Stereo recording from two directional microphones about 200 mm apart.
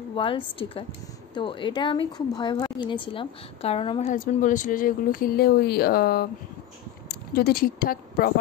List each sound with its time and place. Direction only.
0.1 s speech: 25° left (ahead or behind)
4.1 s speech: 40° left (ahead or behind)